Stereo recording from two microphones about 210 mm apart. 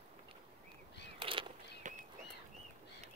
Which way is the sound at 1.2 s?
25° right (ahead or behind).